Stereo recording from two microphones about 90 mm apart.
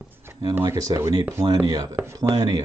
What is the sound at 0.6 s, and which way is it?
Speech, 40° right (ahead or behind).